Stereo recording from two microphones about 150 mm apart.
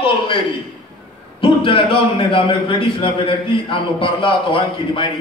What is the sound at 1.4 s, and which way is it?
A man's voice, 35° left (ahead or behind).